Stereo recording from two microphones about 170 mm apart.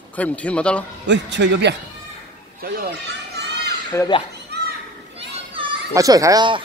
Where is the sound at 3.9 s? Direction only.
15° left (ahead or behind).